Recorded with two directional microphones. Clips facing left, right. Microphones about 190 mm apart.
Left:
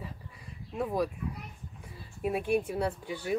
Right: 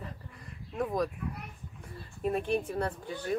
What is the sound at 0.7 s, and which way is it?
Speech, 10° left (ahead or behind).